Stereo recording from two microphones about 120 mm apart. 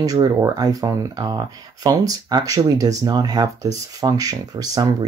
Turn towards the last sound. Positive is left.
turn(degrees=-30)  # may be behind; listen again after turning